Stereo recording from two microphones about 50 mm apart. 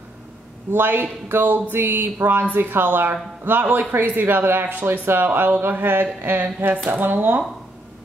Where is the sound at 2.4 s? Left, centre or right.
Right.